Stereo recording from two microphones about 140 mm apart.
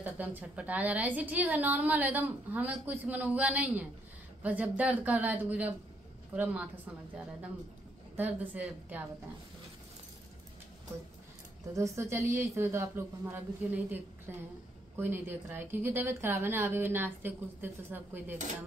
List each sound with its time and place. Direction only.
0.0 s a woman's voice: 10° right (ahead or behind)
8.2 s a woman's voice: 15° right (ahead or behind)
11.7 s a woman's voice: 20° right (ahead or behind)